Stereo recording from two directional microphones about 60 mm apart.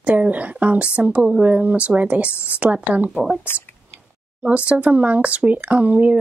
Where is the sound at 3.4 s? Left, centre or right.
Left.